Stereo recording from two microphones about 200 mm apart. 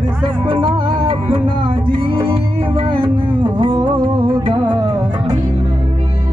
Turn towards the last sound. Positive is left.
turn(degrees=-25)  # may be behind; listen again after turning